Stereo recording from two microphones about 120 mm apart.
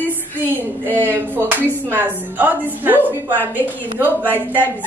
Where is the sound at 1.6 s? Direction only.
15° left (ahead or behind).